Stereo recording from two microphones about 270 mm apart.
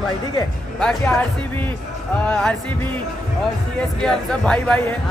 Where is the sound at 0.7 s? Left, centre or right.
Centre.